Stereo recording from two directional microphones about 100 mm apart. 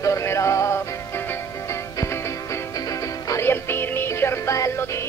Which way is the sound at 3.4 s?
25° left (ahead or behind).